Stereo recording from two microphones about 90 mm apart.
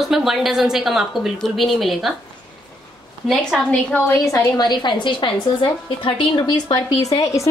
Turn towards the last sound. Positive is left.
turn(degrees=35)  # may be behind; listen again after turning